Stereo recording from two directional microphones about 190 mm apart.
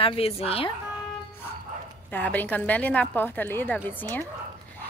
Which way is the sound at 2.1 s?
10° left (ahead or behind).